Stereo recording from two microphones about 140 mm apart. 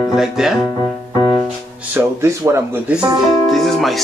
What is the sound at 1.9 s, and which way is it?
Speech, 20° right (ahead or behind).